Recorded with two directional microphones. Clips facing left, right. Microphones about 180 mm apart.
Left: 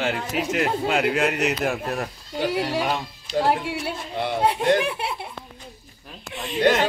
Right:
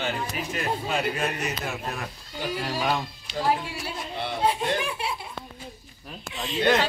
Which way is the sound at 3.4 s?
65° left (ahead or behind).